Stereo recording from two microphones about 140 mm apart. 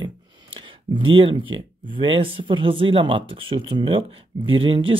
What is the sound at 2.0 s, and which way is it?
Speech, 40° right (ahead or behind).